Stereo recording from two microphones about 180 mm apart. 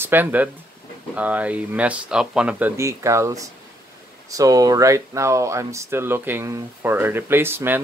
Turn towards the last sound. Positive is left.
turn(degrees=-10)  # may be behind; listen again after turning